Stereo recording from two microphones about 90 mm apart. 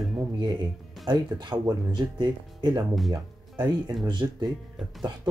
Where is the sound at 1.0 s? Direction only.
60° right (ahead or behind).